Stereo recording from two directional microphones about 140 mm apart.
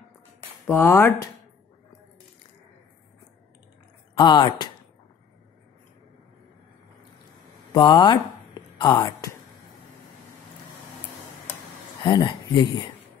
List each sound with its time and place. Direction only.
0.7 s speech: 15° left (ahead or behind)
4.1 s speech: 30° left (ahead or behind)
7.7 s speech: 35° left (ahead or behind)
12.0 s speech: 35° left (ahead or behind)